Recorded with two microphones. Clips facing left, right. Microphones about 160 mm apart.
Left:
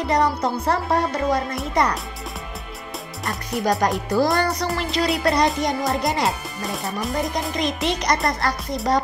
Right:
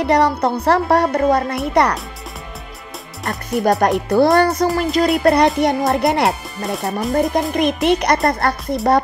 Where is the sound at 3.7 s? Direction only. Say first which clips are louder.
Right 5 dB; 70° right (ahead or behind).